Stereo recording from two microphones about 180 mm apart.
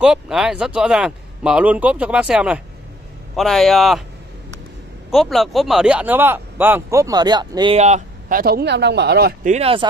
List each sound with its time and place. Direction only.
0.0 s a man's voice: 5° right (ahead or behind)
5.1 s speech: centre (ahead or behind); by 7.7 s 25° right (ahead or behind)
7.7 s speech: 40° right (ahead or behind); by 9.3 s 65° right (ahead or behind)
9.4 s speech: 40° right (ahead or behind)